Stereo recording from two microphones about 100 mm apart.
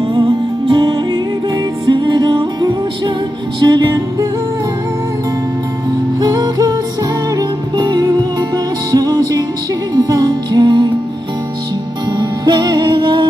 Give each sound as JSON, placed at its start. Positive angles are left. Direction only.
{"t": 0.1, "sound": "music", "side_deg": -50}
{"t": 6.1, "sound": "music", "side_deg": -40}
{"t": 12.1, "sound": "music", "side_deg": -45}